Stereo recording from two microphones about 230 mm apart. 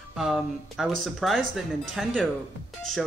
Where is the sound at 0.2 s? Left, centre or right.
Centre.